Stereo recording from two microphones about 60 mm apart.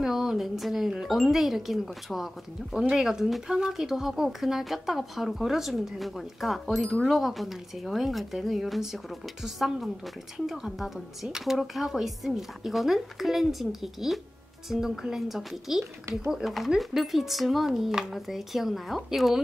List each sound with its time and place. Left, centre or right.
0.0 s speech: centre